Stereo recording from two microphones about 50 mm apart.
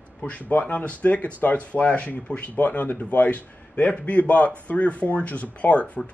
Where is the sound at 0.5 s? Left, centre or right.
Left.